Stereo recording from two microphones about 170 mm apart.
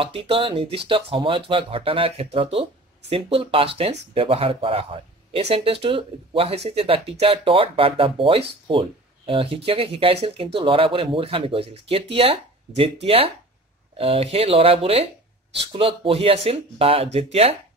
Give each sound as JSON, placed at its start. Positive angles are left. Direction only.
{"t": 0.0, "sound": "speech", "side_deg": -30}